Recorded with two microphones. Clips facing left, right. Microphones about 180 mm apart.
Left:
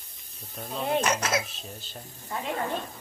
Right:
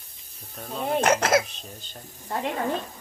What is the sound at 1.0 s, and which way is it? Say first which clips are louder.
Speech: right 7 dB; 55° right (ahead or behind).